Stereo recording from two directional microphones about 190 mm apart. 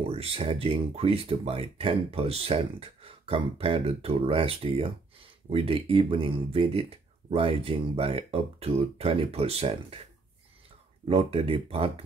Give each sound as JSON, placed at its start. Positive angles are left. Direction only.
{"t": 0.1, "sound": "speech", "side_deg": -30}
{"t": 11.1, "sound": "speech", "side_deg": -30}